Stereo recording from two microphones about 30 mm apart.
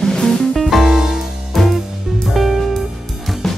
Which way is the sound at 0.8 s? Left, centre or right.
Centre.